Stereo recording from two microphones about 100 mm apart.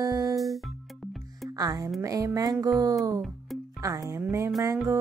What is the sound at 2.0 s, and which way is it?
Music, 35° right (ahead or behind).